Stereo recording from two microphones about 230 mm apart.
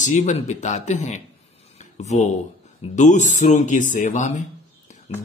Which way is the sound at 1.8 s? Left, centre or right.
Left.